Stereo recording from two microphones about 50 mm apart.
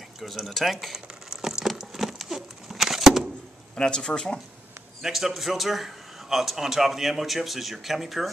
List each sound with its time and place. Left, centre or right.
0.2 s a man's voice: centre
0.9 s a sound: centre
3.7 s speech: centre
5.0 s a man's voice: centre